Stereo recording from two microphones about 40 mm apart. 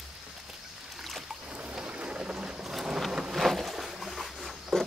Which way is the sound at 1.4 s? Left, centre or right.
Right.